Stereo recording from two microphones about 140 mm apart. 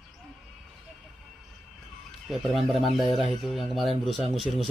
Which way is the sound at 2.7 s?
Centre (ahead or behind).